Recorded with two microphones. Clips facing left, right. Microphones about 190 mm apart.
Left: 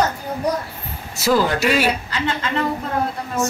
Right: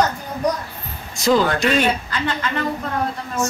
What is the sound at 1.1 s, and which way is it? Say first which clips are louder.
Speech: right 1 dB; 5° left (ahead or behind).